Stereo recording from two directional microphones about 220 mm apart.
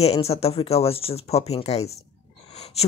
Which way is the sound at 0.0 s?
25° left (ahead or behind).